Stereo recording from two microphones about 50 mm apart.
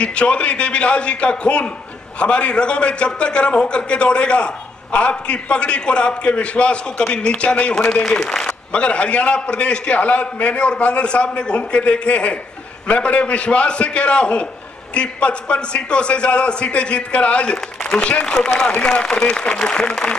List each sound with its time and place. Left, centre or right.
0.0 s a man's voice: left